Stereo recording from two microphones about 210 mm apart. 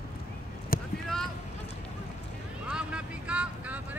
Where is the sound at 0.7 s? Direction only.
45° left (ahead or behind).